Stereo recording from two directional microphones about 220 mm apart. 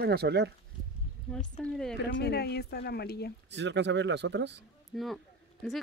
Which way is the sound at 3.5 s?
50° right (ahead or behind).